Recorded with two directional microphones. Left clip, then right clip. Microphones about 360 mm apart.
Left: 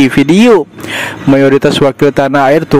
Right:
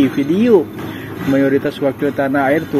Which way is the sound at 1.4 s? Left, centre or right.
Left.